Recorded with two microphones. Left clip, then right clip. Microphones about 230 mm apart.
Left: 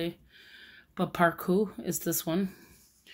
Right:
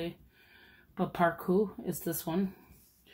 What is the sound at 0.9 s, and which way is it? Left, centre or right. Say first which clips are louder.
Speech: left 3 dB; left.